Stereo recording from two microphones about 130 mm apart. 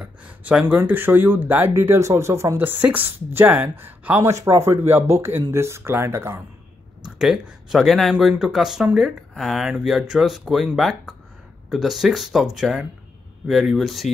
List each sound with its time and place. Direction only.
0.0 s speech: 10° right (ahead or behind)
7.2 s speech: 5° right (ahead or behind)